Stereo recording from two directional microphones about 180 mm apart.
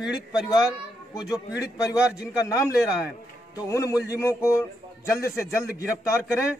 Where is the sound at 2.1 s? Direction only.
5° right (ahead or behind).